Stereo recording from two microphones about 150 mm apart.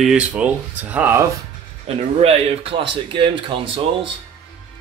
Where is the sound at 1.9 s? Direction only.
45° right (ahead or behind).